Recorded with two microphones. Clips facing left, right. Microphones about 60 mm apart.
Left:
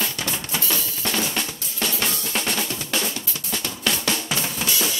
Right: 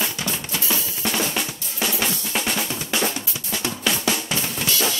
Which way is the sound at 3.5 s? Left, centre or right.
Centre.